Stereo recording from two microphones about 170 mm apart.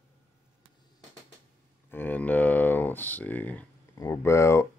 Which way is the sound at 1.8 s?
10° left (ahead or behind).